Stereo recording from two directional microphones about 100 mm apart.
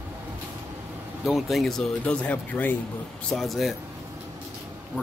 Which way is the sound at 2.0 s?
15° left (ahead or behind).